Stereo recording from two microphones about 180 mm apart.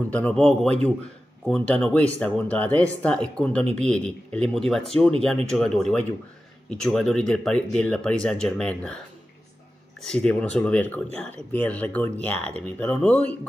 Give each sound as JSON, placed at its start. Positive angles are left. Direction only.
{"t": 0.1, "sound": "speech", "side_deg": 5}
{"t": 10.0, "sound": "speech", "side_deg": 5}